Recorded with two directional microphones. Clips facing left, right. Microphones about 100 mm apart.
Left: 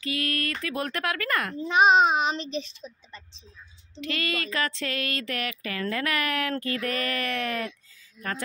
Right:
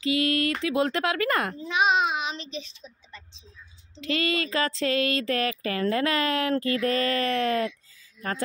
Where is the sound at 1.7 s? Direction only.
40° left (ahead or behind).